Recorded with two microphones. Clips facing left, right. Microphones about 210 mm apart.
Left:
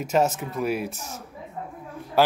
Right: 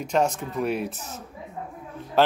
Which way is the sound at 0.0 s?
5° left (ahead or behind).